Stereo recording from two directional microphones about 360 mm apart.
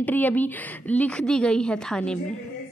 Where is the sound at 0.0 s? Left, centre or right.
Centre.